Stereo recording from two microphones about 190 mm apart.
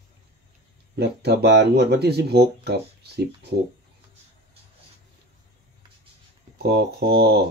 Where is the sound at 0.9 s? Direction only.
60° right (ahead or behind).